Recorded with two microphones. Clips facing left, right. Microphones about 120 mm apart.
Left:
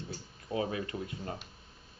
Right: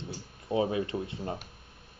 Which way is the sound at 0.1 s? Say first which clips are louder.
Right 6 dB; 25° right (ahead or behind).